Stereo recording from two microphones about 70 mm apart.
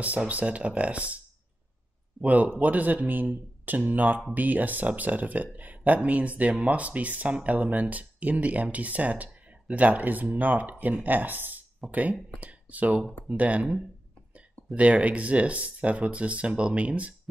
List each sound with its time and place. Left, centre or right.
0.0 s speech: centre
2.2 s speech: right